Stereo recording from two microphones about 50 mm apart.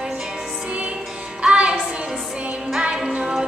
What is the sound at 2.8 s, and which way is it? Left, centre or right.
Music, centre.